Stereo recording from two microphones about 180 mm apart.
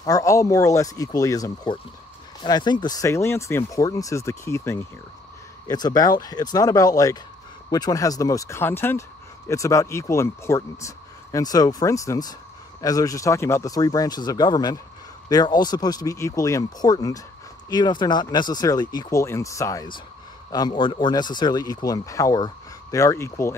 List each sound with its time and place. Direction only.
0.0 s speech: 20° left (ahead or behind)